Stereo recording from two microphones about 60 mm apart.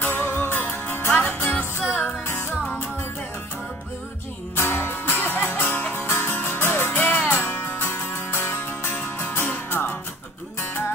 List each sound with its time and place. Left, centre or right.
0.0 s music: left
1.1 s music: left
4.6 s music: left
7.2 s music: centre
7.4 s music: left